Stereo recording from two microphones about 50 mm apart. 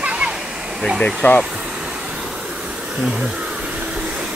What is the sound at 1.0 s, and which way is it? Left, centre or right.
Speech, left.